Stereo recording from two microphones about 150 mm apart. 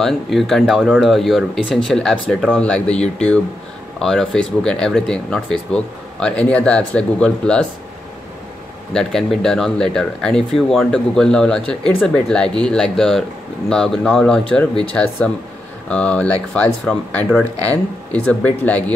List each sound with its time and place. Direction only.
0.0 s speech: centre (ahead or behind)
8.9 s speech: 5° left (ahead or behind)
15.9 s speech: 10° left (ahead or behind)